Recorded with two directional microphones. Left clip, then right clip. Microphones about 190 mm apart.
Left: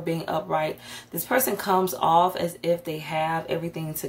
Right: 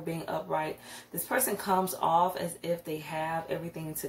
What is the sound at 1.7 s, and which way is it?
Speech, 35° left (ahead or behind).